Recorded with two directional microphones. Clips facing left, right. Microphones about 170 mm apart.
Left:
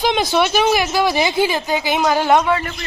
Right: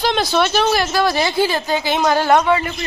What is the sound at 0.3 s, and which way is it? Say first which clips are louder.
A woman's voice: left 1 dB; 10° left (ahead or behind).